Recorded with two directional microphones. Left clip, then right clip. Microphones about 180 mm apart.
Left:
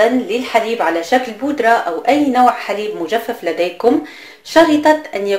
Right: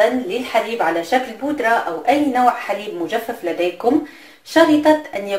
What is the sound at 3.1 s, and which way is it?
Speech, 40° left (ahead or behind).